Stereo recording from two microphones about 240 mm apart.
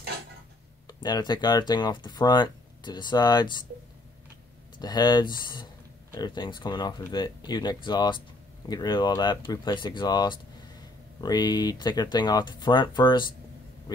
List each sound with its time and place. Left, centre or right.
0.8 s speech: centre
4.7 s speech: centre